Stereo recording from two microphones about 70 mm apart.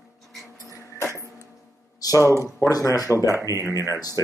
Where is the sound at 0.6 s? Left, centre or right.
Left.